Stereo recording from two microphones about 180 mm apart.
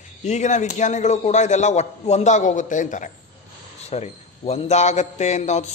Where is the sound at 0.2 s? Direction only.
40° left (ahead or behind).